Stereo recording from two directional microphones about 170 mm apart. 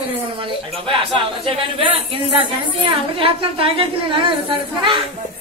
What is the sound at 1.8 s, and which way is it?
Speech, 30° right (ahead or behind).